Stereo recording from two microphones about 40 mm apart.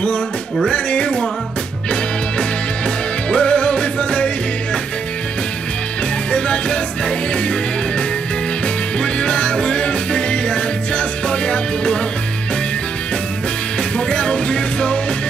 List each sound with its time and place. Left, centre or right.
0.0 s music: left
3.3 s music: left
6.3 s music: left
9.0 s music: left
13.9 s music: left